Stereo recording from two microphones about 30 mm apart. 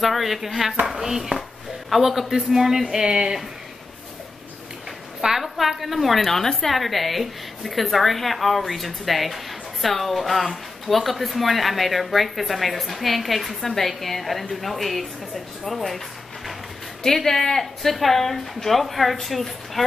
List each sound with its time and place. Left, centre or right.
0.0 s a woman's voice: centre
3.1 s speech: right
5.4 s a sound: centre
6.2 s a woman's voice: centre
17.0 s a woman's voice: centre